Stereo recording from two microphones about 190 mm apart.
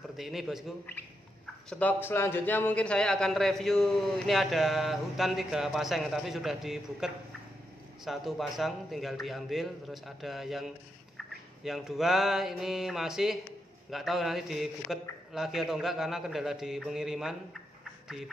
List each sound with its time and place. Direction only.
0.2 s a man's voice: centre (ahead or behind)
11.1 s a sound: centre (ahead or behind)
13.8 s a man's voice: centre (ahead or behind)